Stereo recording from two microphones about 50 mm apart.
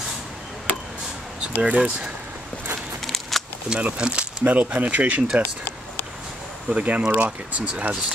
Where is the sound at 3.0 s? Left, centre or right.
Centre.